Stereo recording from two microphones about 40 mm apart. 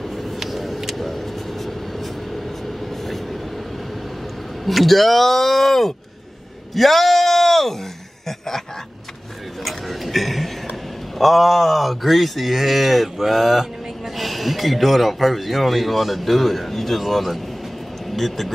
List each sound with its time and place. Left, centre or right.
0.0 s vehicle: centre
4.6 s speech: centre
9.7 s a sound: centre
11.1 s speech: centre